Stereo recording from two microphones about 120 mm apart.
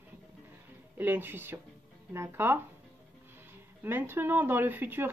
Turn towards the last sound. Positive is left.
turn(degrees=-15)  # may be behind; listen again after turning